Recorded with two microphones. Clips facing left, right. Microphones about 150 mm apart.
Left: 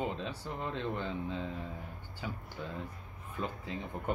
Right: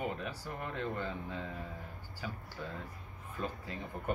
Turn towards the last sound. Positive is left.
turn(degrees=20)  # may be behind; listen again after turning